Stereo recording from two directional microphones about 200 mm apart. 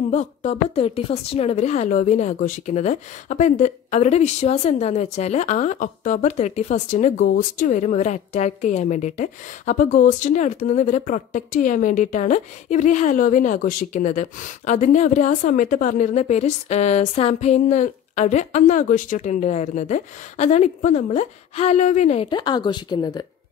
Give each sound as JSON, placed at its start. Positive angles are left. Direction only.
{"t": 0.1, "sound": "a woman's voice", "side_deg": 35}